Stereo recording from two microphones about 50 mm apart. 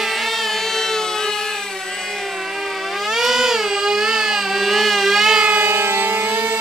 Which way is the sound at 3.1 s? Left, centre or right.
Centre.